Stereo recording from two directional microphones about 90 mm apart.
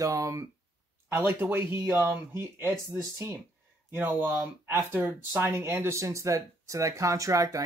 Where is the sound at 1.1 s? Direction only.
25° right (ahead or behind).